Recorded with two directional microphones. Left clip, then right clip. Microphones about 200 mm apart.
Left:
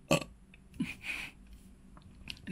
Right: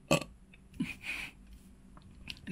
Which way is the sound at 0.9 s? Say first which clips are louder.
Even; centre (ahead or behind).